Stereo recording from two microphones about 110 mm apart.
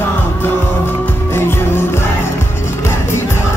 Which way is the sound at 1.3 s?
20° left (ahead or behind).